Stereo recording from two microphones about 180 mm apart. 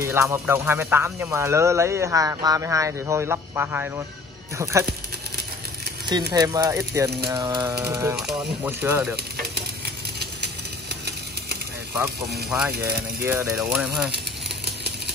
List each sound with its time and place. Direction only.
0.0 s speech: 15° right (ahead or behind)
6.3 s speech: 20° right (ahead or behind)
10.1 s a sound: 65° right (ahead or behind)
11.9 s speech: 15° right (ahead or behind)